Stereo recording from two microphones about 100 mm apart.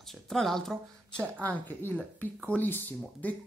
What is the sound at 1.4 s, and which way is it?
Speech, 20° left (ahead or behind).